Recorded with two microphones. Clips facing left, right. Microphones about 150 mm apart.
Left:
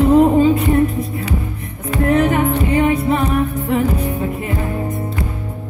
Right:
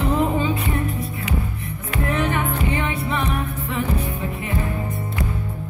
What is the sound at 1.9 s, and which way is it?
Music, 40° left (ahead or behind).